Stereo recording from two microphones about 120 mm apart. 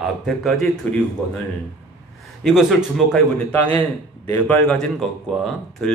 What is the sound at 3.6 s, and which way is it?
A man's voice, 15° left (ahead or behind).